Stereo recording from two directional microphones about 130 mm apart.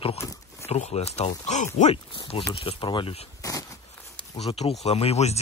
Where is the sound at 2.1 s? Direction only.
40° left (ahead or behind).